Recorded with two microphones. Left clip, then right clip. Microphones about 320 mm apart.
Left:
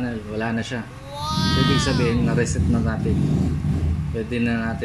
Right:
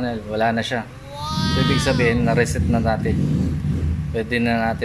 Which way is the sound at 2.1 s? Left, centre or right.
Centre.